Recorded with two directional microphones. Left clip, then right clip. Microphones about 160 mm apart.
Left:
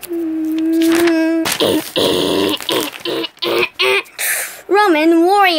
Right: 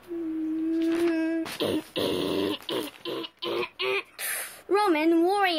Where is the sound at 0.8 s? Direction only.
70° left (ahead or behind).